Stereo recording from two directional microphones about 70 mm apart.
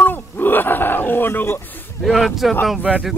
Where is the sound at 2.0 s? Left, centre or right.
Centre.